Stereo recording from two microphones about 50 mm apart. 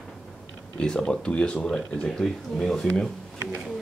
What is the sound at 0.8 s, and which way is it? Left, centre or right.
Speech, centre.